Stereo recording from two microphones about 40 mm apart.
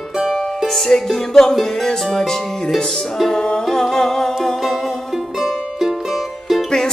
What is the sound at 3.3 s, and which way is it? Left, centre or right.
Music, left.